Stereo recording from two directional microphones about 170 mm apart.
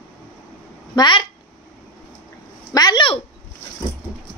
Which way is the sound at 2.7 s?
25° left (ahead or behind).